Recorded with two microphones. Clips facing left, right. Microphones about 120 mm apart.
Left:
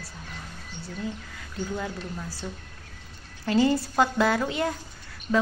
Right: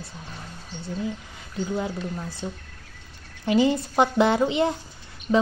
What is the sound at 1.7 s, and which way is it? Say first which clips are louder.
Speech: right 5 dB; 20° right (ahead or behind).